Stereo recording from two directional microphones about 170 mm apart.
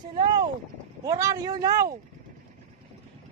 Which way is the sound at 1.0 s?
20° right (ahead or behind).